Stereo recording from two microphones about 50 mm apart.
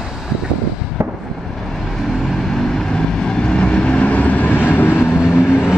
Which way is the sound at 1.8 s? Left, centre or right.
Centre.